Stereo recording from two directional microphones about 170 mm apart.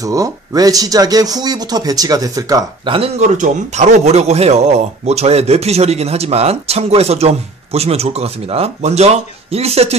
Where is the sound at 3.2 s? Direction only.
45° right (ahead or behind).